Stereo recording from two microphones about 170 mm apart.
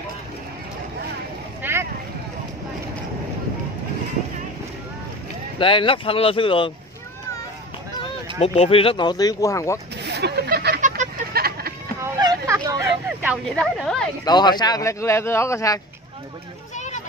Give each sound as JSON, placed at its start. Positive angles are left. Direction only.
{"t": 1.6, "sound": "a sound", "side_deg": -15}
{"t": 5.6, "sound": "speech", "side_deg": 30}
{"t": 8.4, "sound": "speech", "side_deg": 35}
{"t": 10.0, "sound": "a sound", "side_deg": -75}
{"t": 12.0, "sound": "vehicle", "side_deg": -20}
{"t": 13.5, "sound": "a woman's voice", "side_deg": 5}
{"t": 14.2, "sound": "speech", "side_deg": 25}
{"t": 16.7, "sound": "chatter", "side_deg": 45}